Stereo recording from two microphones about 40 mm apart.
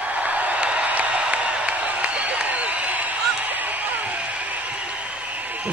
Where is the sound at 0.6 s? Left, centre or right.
Right.